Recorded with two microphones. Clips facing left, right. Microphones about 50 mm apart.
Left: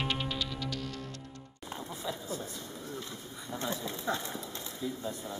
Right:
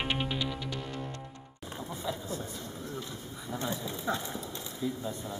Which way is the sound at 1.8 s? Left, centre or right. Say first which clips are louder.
Right 3 dB; centre.